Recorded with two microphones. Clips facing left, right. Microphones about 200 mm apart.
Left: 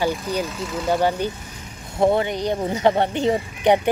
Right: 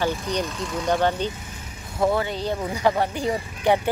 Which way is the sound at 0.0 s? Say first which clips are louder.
Left 2 dB; 10° left (ahead or behind).